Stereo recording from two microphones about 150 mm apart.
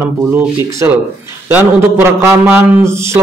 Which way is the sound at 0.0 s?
15° right (ahead or behind).